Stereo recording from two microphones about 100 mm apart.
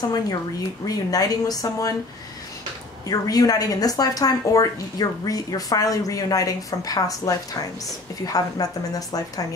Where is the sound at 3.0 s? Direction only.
35° left (ahead or behind).